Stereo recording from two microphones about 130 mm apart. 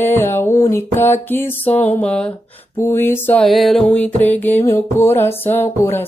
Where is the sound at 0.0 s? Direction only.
15° left (ahead or behind).